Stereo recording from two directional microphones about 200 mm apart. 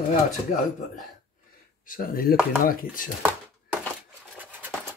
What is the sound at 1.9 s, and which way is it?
Speech, 45° left (ahead or behind).